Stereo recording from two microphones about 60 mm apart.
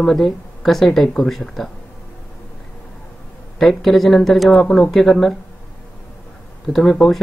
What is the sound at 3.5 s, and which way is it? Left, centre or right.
Speech, centre.